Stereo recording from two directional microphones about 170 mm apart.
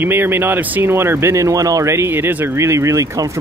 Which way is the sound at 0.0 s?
10° right (ahead or behind).